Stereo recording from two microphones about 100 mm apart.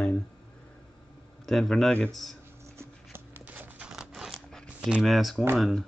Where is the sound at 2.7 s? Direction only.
20° right (ahead or behind); by 4.6 s centre (ahead or behind).